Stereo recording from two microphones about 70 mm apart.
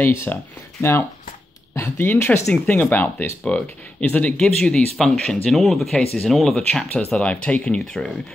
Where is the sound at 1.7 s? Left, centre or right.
Left.